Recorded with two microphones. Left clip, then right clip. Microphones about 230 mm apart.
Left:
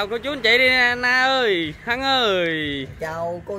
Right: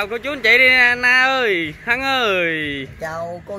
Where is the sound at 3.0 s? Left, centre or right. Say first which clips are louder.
Even; centre.